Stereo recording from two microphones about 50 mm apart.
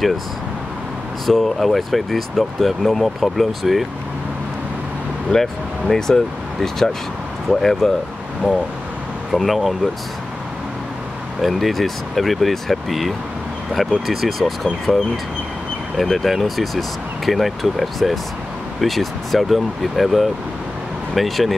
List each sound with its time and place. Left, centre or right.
1.2 s speech: centre
5.3 s speech: centre
9.3 s speech: centre
11.4 s speech: centre
16.0 s speech: centre